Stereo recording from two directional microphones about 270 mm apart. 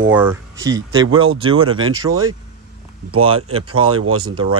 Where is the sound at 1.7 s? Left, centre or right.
Right.